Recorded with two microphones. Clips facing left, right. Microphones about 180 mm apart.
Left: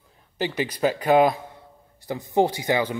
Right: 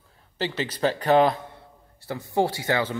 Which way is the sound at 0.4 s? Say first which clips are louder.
Left 2 dB; 15° left (ahead or behind).